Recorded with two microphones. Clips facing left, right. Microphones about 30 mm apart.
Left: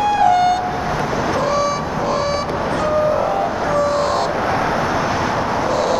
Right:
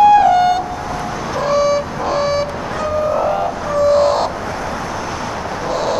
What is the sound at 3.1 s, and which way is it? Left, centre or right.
Music, centre.